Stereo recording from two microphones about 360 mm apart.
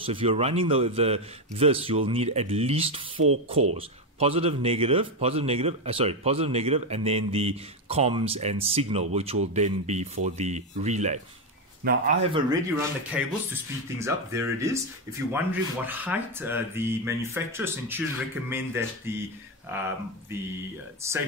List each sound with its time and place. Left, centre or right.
0.0 s a man's voice: centre
20.3 s a man's voice: centre